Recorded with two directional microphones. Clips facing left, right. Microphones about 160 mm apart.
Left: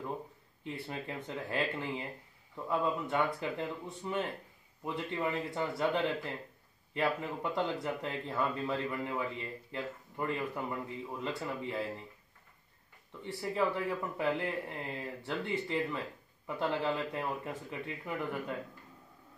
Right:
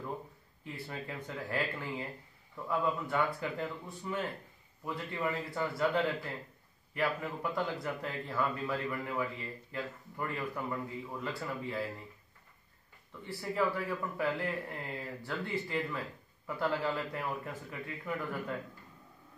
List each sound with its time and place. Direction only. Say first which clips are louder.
0.7 s speech: left 2 dB; 20° left (ahead or behind)
13.2 s speech: even; 20° left (ahead or behind)